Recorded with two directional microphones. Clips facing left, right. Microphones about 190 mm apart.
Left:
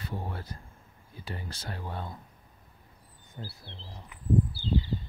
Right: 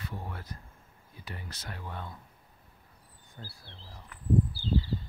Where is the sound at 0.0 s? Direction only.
30° left (ahead or behind).